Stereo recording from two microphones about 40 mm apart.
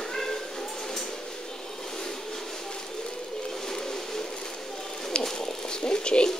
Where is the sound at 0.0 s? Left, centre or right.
Centre.